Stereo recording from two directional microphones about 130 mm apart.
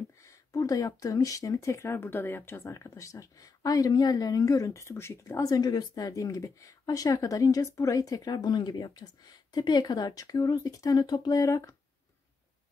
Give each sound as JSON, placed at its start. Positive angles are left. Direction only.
{"t": 0.2, "sound": "speech", "side_deg": 25}